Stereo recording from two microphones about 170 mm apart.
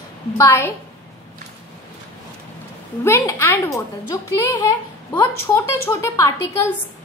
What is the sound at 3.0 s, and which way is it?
Speech, 15° left (ahead or behind).